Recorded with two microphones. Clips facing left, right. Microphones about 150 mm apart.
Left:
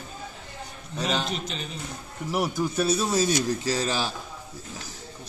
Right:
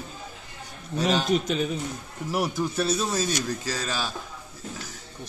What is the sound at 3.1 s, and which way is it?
A man's voice, 25° left (ahead or behind).